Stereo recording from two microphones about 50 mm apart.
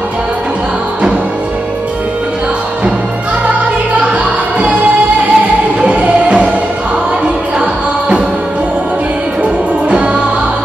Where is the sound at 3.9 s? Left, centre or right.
Right.